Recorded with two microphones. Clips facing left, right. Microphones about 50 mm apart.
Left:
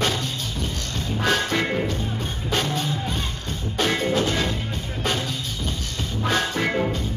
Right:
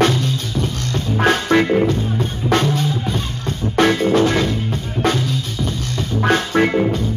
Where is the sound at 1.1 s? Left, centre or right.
Right.